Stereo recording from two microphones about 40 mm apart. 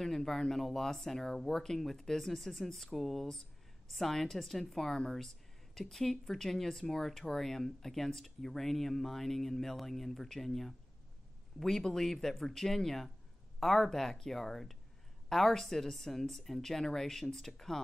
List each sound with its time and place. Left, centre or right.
0.0 s speech: centre
4.8 s speech: centre
5.8 s speech: centre